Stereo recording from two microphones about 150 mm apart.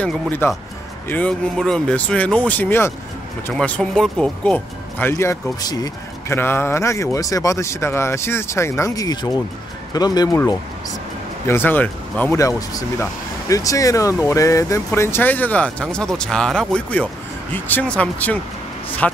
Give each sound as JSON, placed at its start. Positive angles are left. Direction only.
{"t": 0.0, "sound": "speech", "side_deg": 15}
{"t": 11.4, "sound": "speech", "side_deg": 15}
{"t": 12.4, "sound": "speech", "side_deg": 20}